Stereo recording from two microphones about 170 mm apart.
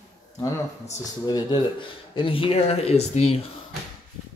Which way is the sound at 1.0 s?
20° left (ahead or behind).